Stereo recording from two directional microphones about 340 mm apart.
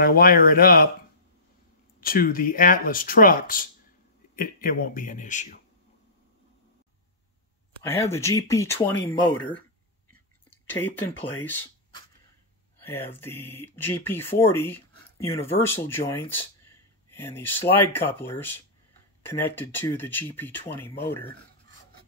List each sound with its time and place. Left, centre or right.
0.0 s speech: left
2.0 s speech: left
7.8 s speech: centre
10.7 s speech: centre